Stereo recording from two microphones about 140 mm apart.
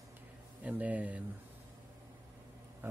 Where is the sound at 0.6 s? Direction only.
10° right (ahead or behind).